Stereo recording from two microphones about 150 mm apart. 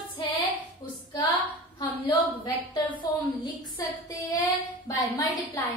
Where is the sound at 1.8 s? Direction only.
30° left (ahead or behind).